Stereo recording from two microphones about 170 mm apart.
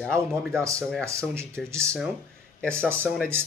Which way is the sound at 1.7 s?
15° right (ahead or behind).